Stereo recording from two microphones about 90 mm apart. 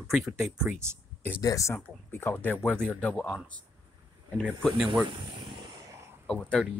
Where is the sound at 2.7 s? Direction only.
10° left (ahead or behind).